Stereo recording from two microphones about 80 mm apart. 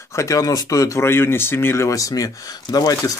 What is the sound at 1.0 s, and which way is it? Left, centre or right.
Speech, left.